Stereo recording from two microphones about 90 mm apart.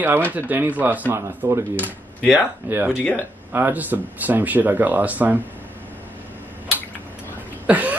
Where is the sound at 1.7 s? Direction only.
15° left (ahead or behind).